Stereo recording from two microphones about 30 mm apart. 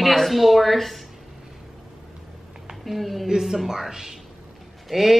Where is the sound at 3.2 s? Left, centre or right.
Centre.